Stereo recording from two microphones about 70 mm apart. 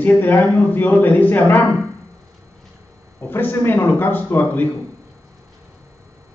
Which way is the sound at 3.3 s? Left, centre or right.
Left.